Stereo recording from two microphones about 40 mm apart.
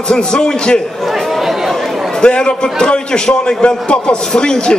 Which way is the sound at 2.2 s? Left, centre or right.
Left.